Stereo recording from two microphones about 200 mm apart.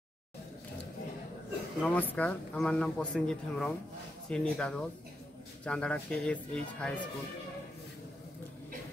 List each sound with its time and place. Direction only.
1.8 s speech: 5° left (ahead or behind)